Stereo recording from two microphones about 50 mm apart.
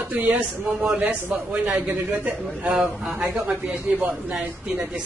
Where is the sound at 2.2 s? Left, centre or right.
Right.